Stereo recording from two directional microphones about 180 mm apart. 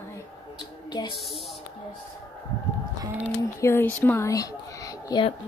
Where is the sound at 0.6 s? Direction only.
25° left (ahead or behind).